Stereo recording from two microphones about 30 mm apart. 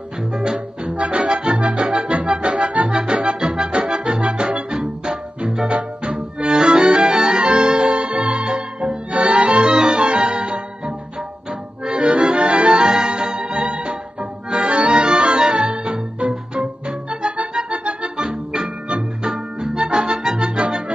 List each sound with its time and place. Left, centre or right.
0.3 s music: right
0.8 s music: right
4.6 s music: right
5.7 s music: right
6.5 s music: right
9.7 s music: right
9.9 s music: right
11.8 s accordion: right
12.7 s music: right
14.5 s accordion: right
15.5 s music: right
17.6 s accordion: right
18.1 s music: right
19.9 s accordion: right